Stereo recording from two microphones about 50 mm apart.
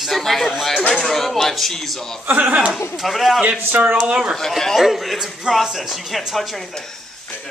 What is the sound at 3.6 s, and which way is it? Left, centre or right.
Speech, right.